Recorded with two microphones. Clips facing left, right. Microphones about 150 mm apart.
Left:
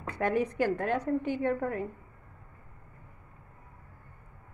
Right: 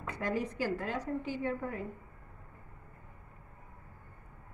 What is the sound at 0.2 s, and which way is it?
A woman's voice, 60° left (ahead or behind).